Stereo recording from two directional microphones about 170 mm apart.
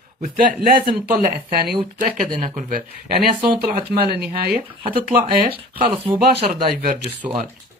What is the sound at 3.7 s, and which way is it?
Speech, 65° right (ahead or behind).